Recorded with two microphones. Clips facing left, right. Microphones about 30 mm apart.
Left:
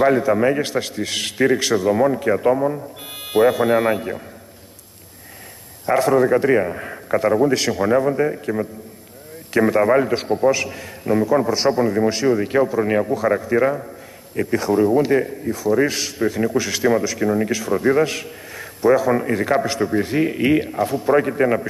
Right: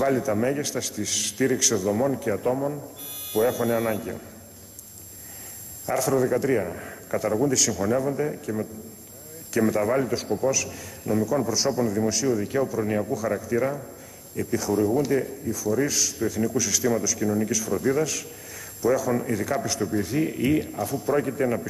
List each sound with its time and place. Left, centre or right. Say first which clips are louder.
0.0 s a man's voice: left 7 dB; left
5.9 s a man's voice: left 7 dB; left